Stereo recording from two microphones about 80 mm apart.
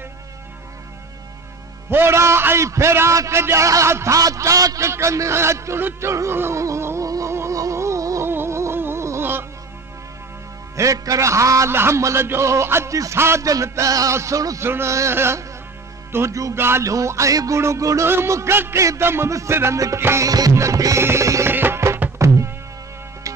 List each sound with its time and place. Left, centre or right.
1.9 s a man's voice: right
7.1 s music: right
8.3 s music: right
10.8 s a man's voice: right
13.5 s music: right
14.6 s a man's voice: right
16.5 s a man's voice: right
20.2 s music: right
21.5 s music: right